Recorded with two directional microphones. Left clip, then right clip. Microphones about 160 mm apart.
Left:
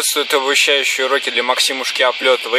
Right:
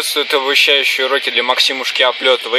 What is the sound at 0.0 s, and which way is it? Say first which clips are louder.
Speech: right 1 dB; 5° left (ahead or behind).